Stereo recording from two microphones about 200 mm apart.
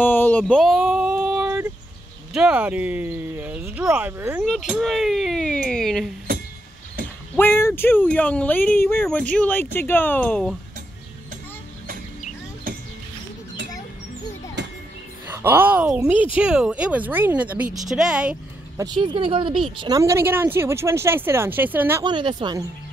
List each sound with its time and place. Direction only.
0.0 s a sound: 10° left (ahead or behind); by 1.7 s 5° right (ahead or behind)
2.3 s speech: 5° right (ahead or behind)
7.3 s speech: 10° left (ahead or behind)
12.7 s rodents: 45° right (ahead or behind)
15.2 s speech: 10° right (ahead or behind)
18.8 s speech: 20° right (ahead or behind)
22.0 s speech: 25° right (ahead or behind)